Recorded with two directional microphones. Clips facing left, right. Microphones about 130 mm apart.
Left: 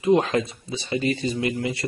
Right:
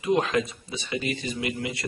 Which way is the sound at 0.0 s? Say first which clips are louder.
Left 4 dB; 30° left (ahead or behind).